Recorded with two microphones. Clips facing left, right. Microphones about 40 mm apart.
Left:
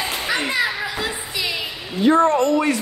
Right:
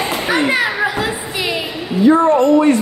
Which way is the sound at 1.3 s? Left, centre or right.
Right.